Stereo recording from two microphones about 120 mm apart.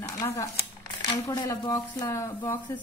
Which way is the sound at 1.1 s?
35° left (ahead or behind).